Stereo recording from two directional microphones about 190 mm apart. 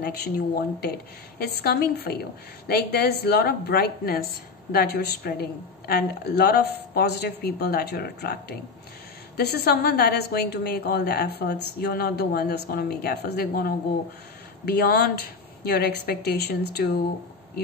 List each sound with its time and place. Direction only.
0.0 s a woman's voice: 55° left (ahead or behind)